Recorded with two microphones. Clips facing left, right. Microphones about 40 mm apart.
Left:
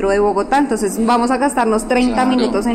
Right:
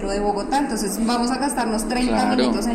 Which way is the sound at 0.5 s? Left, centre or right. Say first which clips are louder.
Left 6 dB; left.